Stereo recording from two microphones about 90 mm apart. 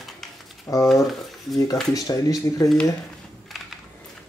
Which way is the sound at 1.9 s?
40° left (ahead or behind).